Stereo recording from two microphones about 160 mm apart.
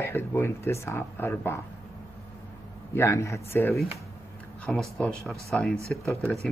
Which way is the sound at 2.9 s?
20° left (ahead or behind).